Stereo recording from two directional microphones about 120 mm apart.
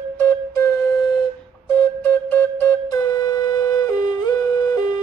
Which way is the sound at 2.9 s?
30° left (ahead or behind).